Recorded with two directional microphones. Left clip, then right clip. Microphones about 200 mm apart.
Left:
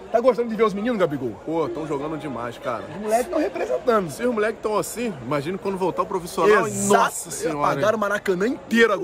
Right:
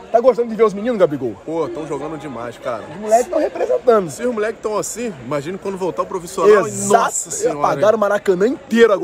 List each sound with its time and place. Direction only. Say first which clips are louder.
0.1 s speech: right 5 dB; 5° left (ahead or behind)
1.5 s speech: right 1 dB; 20° left (ahead or behind)
3.3 s a man's voice: right 6 dB; 5° left (ahead or behind)
4.2 s speech: right 3 dB; 20° left (ahead or behind)
6.4 s a man's voice: right 6 dB; centre (ahead or behind)